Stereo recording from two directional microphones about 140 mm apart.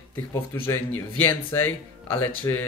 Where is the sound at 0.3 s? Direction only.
20° left (ahead or behind).